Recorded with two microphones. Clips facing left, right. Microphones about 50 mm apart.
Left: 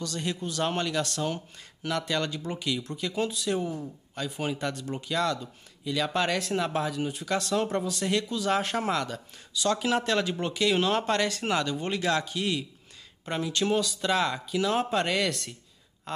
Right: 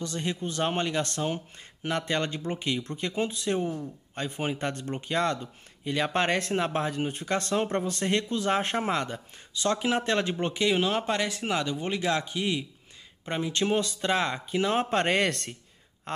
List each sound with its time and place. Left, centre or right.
0.0 s a man's voice: right
10.7 s a man's voice: centre
13.5 s speech: right